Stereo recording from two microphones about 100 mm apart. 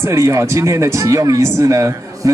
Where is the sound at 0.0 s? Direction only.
30° right (ahead or behind).